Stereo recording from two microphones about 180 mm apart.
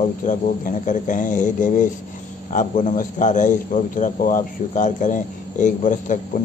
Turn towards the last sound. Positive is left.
turn(degrees=45)  # may be behind; listen again after turning